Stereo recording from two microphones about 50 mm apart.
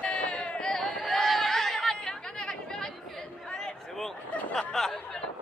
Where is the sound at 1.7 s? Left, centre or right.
Centre.